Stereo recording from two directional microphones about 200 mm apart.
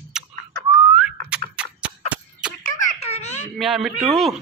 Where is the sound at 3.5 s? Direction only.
Centre (ahead or behind).